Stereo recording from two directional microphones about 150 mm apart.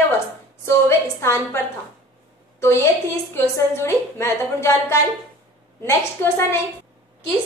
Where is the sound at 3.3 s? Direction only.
15° left (ahead or behind).